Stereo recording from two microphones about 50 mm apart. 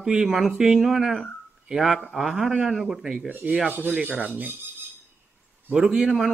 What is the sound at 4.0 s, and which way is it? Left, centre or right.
Dishes, right.